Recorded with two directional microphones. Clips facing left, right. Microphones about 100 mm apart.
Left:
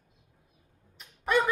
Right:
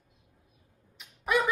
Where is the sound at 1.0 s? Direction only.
5° right (ahead or behind).